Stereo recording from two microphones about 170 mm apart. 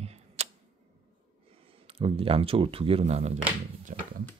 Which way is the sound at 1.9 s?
35° right (ahead or behind).